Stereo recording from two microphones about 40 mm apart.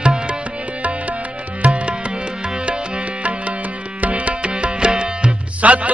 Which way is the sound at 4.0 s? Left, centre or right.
Right.